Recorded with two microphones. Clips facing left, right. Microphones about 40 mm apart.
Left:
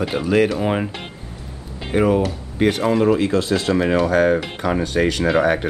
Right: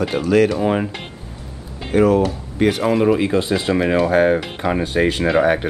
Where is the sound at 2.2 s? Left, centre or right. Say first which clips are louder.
Right 1 dB; centre.